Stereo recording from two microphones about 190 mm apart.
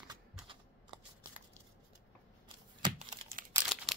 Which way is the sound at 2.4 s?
25° right (ahead or behind).